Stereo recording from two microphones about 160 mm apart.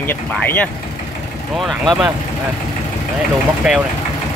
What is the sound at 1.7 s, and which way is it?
Speech, centre (ahead or behind).